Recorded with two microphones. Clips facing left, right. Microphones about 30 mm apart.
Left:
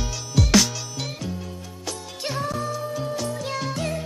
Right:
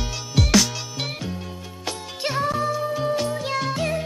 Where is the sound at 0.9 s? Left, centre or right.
Right.